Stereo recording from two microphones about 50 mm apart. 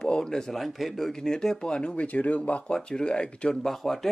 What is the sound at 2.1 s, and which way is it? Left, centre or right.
Speech, left.